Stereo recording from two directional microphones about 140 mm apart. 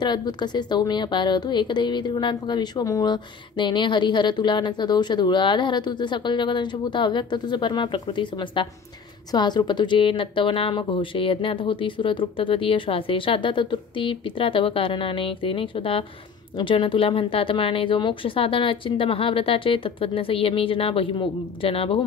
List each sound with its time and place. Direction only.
0.0 s a woman's voice: 30° left (ahead or behind)